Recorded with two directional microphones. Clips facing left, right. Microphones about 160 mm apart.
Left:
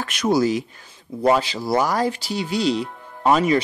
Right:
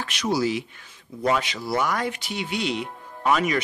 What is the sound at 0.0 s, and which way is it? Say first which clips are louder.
Speech: left 5 dB; 50° left (ahead or behind).